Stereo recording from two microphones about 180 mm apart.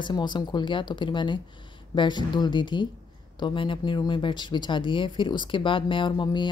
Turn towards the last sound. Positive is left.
turn(degrees=25)  # may be behind; listen again after turning